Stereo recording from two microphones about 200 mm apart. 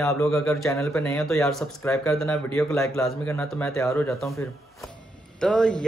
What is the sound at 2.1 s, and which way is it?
A man's voice, centre (ahead or behind).